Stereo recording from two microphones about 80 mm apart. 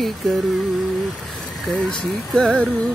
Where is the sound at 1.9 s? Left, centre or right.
Centre.